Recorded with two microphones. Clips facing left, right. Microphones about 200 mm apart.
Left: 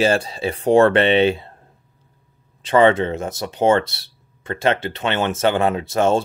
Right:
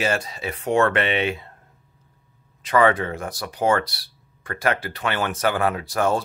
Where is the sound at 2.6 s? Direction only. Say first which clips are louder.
Left 4 dB; 25° left (ahead or behind).